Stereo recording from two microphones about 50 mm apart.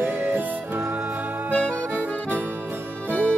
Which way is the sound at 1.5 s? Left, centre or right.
Right.